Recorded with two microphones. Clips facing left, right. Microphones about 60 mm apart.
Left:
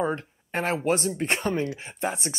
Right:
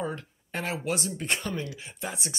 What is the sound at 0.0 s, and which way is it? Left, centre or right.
Speech, left.